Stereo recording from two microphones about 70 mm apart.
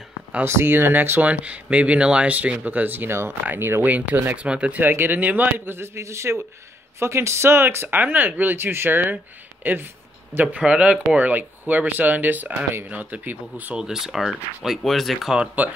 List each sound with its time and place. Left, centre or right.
0.5 s speech: right
1.3 s speech: centre
13.7 s speech: centre
15.3 s speech: centre